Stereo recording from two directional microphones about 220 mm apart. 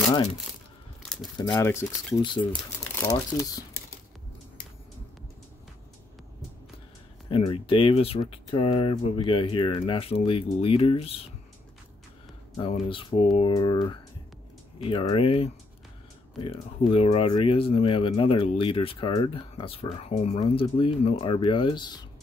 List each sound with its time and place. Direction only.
1.4 s speech: 15° left (ahead or behind)
7.2 s speech: 25° left (ahead or behind)
12.5 s speech: 25° left (ahead or behind)